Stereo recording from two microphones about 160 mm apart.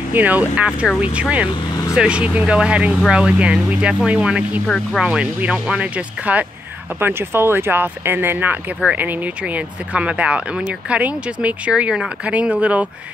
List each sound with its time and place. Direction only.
0.1 s speech: 10° right (ahead or behind)